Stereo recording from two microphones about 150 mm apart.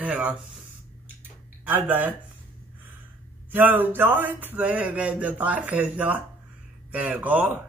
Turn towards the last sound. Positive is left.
turn(degrees=-10)  # may be behind; listen again after turning